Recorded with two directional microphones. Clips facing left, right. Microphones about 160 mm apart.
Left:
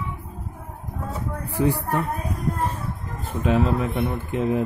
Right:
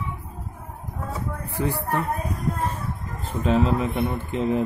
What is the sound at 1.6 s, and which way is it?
Speech, 15° left (ahead or behind).